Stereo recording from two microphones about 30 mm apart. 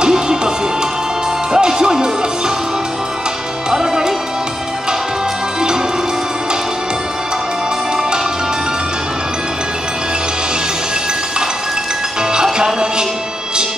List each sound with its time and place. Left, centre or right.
0.0 s music: right
1.5 s music: right
3.7 s music: right
5.6 s music: right
12.2 s music: right